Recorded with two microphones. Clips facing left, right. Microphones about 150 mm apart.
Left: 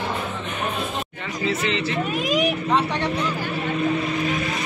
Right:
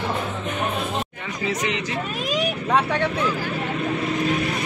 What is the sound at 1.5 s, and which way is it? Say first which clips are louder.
Speech: left 2 dB; 15° right (ahead or behind).